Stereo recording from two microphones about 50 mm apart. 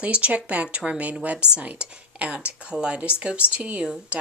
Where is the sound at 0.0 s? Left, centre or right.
Right.